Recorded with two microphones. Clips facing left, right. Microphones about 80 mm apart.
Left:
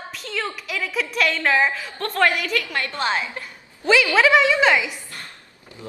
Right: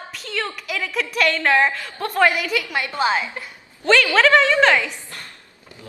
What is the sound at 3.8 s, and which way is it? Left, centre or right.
A woman's voice, centre.